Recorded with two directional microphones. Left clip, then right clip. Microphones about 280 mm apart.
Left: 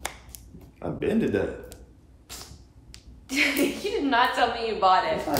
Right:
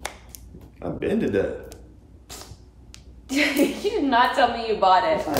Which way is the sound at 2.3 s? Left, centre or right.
Right.